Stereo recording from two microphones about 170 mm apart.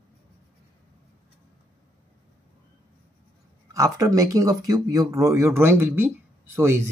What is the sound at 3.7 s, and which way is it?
Speech, 20° right (ahead or behind).